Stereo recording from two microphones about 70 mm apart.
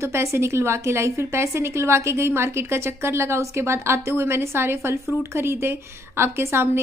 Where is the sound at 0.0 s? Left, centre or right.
Right.